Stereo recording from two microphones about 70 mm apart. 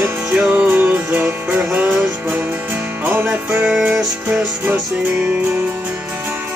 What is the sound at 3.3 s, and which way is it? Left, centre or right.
Music, centre.